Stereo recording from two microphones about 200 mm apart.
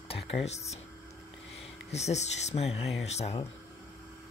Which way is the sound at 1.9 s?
35° left (ahead or behind).